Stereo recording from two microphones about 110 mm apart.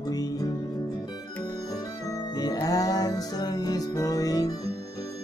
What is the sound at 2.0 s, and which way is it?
Music, 35° left (ahead or behind).